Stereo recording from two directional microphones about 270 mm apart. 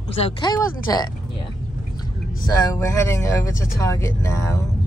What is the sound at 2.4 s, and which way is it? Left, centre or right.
Speech, centre.